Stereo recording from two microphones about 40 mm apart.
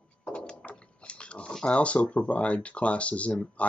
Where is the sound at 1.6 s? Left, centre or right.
Left.